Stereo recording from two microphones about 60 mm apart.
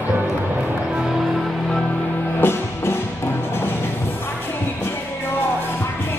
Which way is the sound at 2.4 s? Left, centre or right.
Left.